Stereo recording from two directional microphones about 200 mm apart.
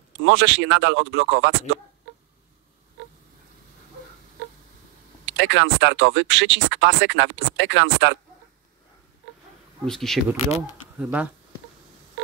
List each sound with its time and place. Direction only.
0.2 s speech: 65° right (ahead or behind)
5.2 s speech: 70° right (ahead or behind)
9.8 s speech: centre (ahead or behind)